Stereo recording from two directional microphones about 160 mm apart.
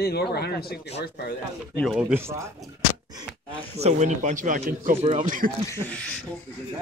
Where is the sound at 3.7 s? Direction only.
45° right (ahead or behind).